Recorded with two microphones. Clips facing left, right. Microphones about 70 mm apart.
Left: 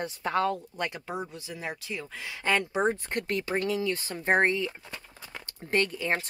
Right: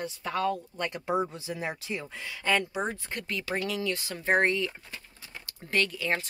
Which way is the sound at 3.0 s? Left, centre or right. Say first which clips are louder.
Left 5 dB; left.